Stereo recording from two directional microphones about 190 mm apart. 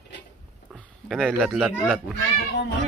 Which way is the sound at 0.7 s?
5° right (ahead or behind).